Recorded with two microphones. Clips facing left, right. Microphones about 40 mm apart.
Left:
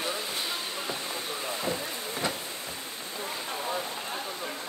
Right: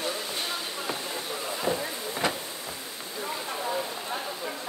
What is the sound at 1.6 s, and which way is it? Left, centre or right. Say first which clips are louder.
Vehicle: right 3 dB; right.